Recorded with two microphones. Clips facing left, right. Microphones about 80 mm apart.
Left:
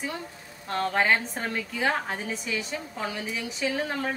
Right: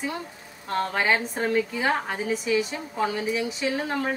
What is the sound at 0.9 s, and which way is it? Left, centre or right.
A woman's voice, centre.